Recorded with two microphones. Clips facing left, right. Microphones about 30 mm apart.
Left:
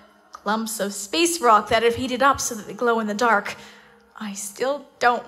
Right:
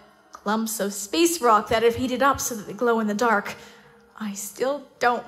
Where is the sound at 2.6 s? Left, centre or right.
Left.